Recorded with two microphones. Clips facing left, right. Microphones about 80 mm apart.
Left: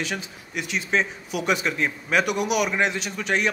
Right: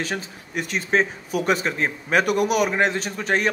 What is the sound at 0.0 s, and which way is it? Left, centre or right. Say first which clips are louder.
Speech: right 2 dB; right.